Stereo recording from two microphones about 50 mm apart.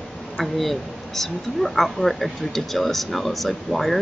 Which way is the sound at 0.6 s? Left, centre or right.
Centre.